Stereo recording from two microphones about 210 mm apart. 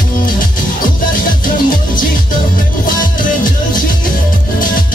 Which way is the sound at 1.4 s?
40° left (ahead or behind).